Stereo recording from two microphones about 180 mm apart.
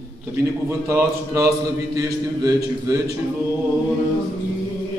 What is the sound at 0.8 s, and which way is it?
A man's voice, 15° right (ahead or behind).